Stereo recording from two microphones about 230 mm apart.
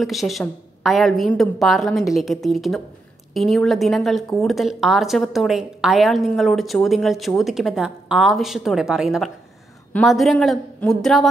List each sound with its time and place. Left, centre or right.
0.0 s speech: centre